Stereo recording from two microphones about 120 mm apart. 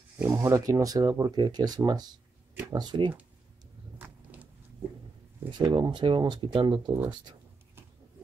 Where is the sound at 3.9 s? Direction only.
15° right (ahead or behind).